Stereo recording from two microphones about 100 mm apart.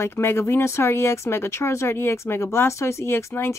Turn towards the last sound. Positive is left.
turn(degrees=25)  # may be behind; listen again after turning